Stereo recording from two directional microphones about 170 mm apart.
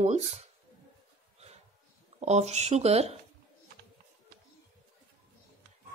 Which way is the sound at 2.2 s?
40° right (ahead or behind).